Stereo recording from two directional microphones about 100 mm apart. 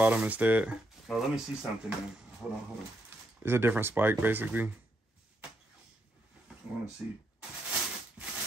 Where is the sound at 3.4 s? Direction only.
25° right (ahead or behind).